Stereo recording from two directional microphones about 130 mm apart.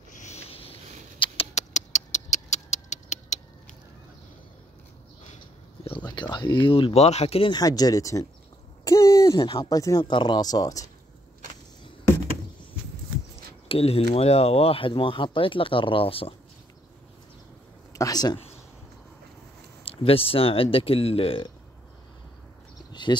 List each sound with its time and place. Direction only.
0.1 s a sound: 65° left (ahead or behind)
0.5 s a sound: 45° left (ahead or behind)
1.2 s rodents: 50° left (ahead or behind); by 2.2 s 65° left (ahead or behind)
2.3 s tick-tock: 60° left (ahead or behind)
5.9 s speech: 35° left (ahead or behind)
7.5 s speech: 30° left (ahead or behind)
8.8 s a sound: 25° left (ahead or behind)
9.4 s speech: 40° left (ahead or behind)
13.7 s speech: 50° left (ahead or behind)
17.9 s speech: 30° left (ahead or behind)
19.8 s speech: 45° left (ahead or behind)
23.1 s speech: 35° left (ahead or behind)